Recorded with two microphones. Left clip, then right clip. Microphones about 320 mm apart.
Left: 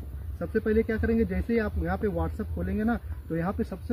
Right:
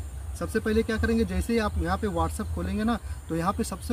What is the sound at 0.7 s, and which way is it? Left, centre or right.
Speech, right.